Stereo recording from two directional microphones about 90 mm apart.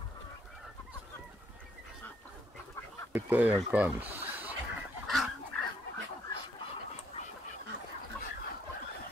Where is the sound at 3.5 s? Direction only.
15° right (ahead or behind).